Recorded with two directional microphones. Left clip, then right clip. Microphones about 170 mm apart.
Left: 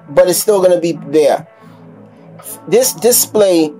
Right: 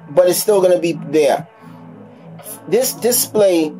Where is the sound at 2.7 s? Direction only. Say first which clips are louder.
Left 5 dB; 45° left (ahead or behind).